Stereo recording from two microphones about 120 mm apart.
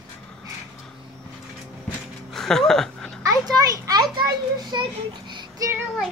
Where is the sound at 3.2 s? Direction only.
30° right (ahead or behind).